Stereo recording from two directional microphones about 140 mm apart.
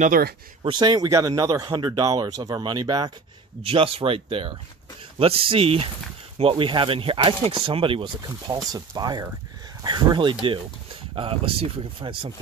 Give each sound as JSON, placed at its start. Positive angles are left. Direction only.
{"t": 0.0, "sound": "speech", "side_deg": -80}
{"t": 0.6, "sound": "speech", "side_deg": -35}
{"t": 3.6, "sound": "speech", "side_deg": -40}